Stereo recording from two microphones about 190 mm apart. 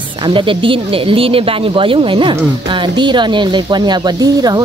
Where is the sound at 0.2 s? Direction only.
25° right (ahead or behind).